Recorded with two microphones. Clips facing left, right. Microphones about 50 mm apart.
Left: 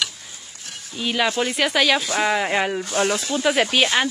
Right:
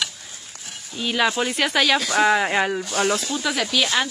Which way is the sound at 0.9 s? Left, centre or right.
Centre.